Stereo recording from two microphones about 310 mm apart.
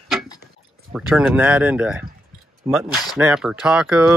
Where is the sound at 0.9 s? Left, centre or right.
Centre.